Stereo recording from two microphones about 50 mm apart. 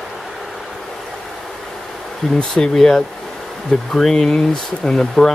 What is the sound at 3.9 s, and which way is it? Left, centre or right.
Speech, centre.